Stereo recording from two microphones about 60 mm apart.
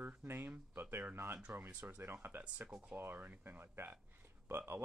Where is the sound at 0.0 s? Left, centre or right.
Right.